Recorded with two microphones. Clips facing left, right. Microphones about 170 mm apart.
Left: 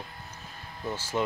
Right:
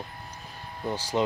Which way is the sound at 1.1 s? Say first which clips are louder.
Right 3 dB; 25° right (ahead or behind).